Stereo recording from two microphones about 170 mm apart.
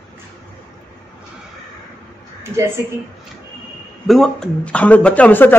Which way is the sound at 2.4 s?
15° right (ahead or behind).